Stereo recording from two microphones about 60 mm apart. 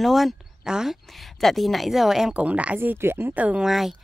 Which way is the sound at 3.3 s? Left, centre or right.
Right.